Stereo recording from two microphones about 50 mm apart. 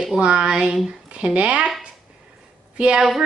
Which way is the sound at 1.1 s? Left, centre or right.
Right.